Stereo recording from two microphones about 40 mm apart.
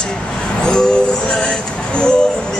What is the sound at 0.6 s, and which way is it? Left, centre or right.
Music, left.